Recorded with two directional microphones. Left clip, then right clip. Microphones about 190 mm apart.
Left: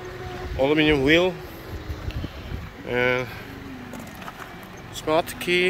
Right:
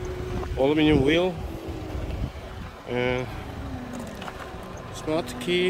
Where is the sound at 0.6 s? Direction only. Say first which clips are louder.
Left 1 dB; 15° right (ahead or behind).